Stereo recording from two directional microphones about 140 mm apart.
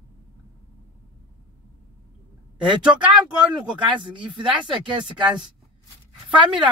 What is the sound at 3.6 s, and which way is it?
Speech, 35° right (ahead or behind).